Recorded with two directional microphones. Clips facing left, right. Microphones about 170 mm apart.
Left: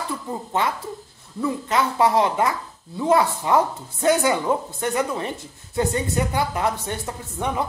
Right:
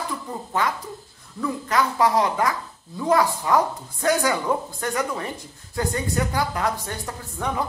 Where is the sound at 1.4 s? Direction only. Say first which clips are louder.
Left 1 dB; 25° left (ahead or behind).